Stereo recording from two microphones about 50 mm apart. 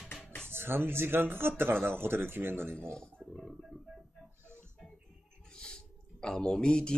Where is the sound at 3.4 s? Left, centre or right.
Centre.